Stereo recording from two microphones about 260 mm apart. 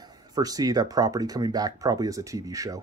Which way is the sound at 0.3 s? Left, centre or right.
Centre.